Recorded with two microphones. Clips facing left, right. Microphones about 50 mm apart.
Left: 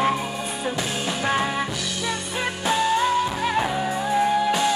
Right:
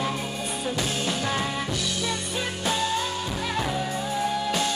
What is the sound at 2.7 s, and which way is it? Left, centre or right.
Music, left.